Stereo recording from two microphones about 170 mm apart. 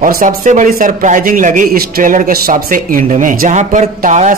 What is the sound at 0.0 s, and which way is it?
Speech, 50° right (ahead or behind).